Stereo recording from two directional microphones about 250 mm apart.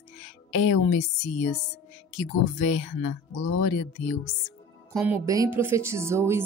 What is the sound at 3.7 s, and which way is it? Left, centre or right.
Speech, left.